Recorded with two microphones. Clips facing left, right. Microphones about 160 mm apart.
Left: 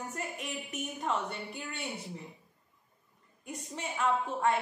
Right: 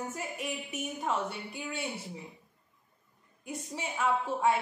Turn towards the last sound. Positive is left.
turn(degrees=-10)  # may be behind; listen again after turning